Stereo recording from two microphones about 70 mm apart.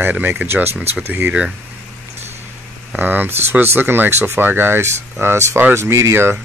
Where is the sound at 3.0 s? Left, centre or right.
Right.